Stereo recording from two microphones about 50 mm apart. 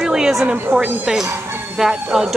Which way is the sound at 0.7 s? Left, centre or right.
Right.